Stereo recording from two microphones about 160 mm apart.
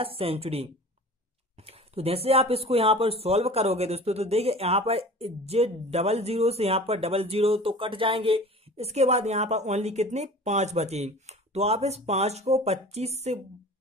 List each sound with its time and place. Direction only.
0.0 s speech: 35° right (ahead or behind)